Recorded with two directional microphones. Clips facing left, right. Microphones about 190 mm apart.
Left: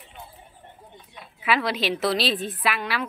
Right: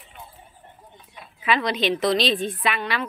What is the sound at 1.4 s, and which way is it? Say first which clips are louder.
A woman's voice: right 2 dB; 5° left (ahead or behind).